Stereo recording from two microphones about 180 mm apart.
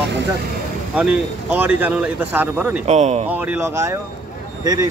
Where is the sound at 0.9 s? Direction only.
5° right (ahead or behind).